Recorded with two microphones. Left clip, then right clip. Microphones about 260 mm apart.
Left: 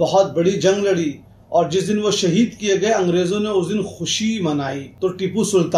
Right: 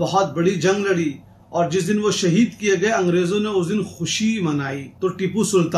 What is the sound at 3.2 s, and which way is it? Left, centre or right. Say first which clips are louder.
Speech: left 1 dB; right.